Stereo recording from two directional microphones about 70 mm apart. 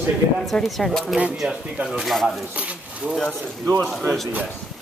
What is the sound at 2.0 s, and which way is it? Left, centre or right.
Speech, centre.